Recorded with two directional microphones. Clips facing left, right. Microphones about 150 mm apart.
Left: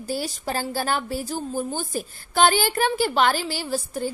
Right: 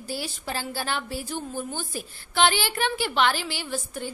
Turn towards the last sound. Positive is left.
turn(degrees=35)  # may be behind; listen again after turning